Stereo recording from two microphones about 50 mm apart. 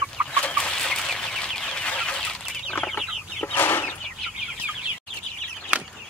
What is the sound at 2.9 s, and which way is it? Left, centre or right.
Chicken, left.